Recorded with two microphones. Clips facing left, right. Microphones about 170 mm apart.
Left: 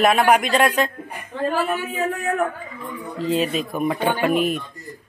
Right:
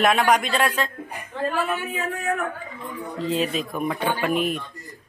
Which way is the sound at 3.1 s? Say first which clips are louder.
Left 3 dB; centre (ahead or behind).